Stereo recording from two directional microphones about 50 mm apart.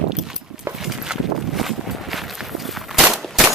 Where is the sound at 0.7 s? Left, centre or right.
Centre.